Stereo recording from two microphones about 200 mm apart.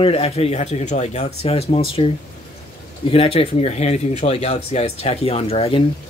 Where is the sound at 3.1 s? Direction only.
30° left (ahead or behind).